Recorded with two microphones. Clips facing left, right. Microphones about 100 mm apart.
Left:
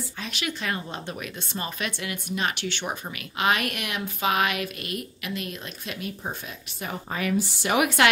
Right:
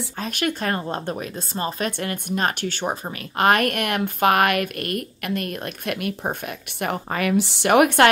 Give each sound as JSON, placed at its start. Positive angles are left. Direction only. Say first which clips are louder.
{"t": 0.2, "sound": "a woman's voice", "louder": "right 7 dB", "side_deg": -50}
{"t": 1.9, "sound": "speech", "louder": "right 6 dB", "side_deg": -50}